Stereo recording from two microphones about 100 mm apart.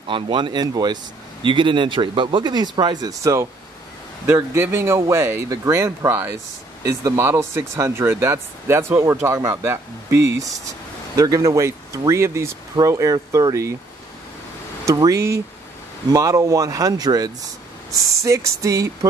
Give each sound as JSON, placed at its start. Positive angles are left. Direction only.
{"t": 0.1, "sound": "speech", "side_deg": -50}
{"t": 4.3, "sound": "speech", "side_deg": -25}
{"t": 6.8, "sound": "speech", "side_deg": -35}
{"t": 14.9, "sound": "speech", "side_deg": -30}